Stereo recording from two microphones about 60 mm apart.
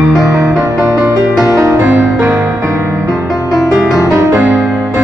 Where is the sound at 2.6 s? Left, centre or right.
Right.